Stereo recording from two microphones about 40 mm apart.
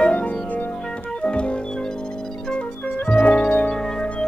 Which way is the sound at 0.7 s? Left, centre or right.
Left.